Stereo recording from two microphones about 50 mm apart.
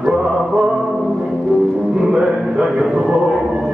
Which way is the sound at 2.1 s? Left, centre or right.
Centre.